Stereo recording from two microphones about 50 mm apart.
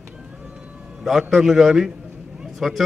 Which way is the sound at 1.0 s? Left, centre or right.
Centre.